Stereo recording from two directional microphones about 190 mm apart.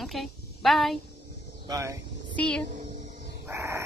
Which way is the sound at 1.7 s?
15° right (ahead or behind).